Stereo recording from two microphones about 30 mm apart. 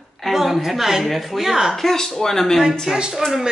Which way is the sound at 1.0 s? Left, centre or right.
Centre.